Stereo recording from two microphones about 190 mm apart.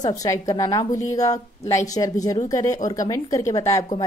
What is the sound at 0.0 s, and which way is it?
A woman's voice, 20° left (ahead or behind).